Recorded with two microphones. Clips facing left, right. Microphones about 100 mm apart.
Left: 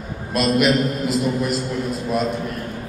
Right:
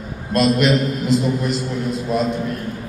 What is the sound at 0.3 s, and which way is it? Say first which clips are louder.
A man's voice: right 2 dB; 5° left (ahead or behind).